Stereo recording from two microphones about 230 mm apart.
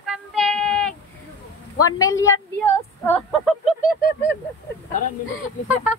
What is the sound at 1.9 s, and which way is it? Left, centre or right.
Speech, centre.